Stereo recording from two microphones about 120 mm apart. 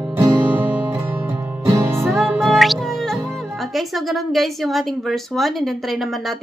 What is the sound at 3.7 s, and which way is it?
A woman's voice, centre (ahead or behind).